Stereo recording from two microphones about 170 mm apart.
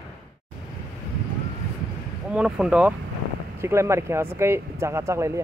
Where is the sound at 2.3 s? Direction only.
5° right (ahead or behind).